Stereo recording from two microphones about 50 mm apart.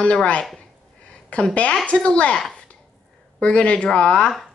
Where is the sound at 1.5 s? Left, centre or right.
Left.